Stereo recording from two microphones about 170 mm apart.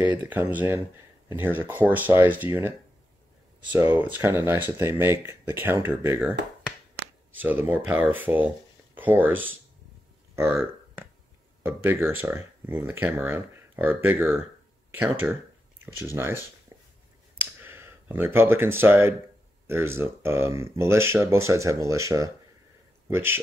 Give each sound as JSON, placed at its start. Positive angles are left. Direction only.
{"t": 0.0, "sound": "speech", "side_deg": -10}
{"t": 3.7, "sound": "speech", "side_deg": -10}
{"t": 7.4, "sound": "speech", "side_deg": -10}
{"t": 11.6, "sound": "speech", "side_deg": -15}
{"t": 17.4, "sound": "a sound", "side_deg": -10}
{"t": 19.7, "sound": "speech", "side_deg": -15}